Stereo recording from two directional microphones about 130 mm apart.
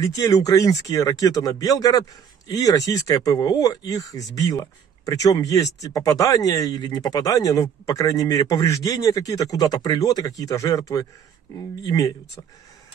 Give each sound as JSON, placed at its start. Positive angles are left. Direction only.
{"t": 0.0, "sound": "speech", "side_deg": 25}